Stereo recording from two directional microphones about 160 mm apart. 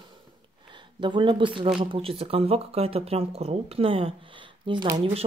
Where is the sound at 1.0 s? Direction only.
30° right (ahead or behind).